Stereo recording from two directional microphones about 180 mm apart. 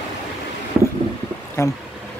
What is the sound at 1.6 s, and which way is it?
Speech, 15° left (ahead or behind).